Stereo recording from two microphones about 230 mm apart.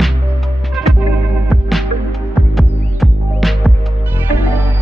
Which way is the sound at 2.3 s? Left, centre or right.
Centre.